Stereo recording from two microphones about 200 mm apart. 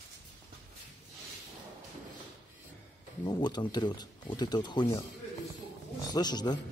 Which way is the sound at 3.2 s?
20° left (ahead or behind).